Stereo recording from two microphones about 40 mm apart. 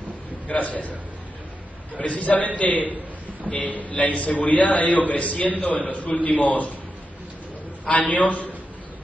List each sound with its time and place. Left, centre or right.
0.5 s a man's voice: left
2.0 s a man's voice: left
7.9 s a man's voice: left